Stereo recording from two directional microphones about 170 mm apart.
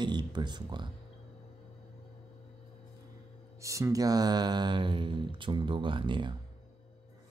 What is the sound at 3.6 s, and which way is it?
Speech, 20° right (ahead or behind).